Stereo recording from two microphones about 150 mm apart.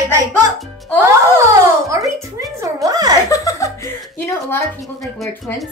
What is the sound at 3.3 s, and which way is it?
Speech, 20° left (ahead or behind).